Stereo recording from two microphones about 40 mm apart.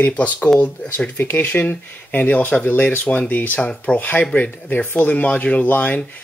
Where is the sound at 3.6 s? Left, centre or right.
Left.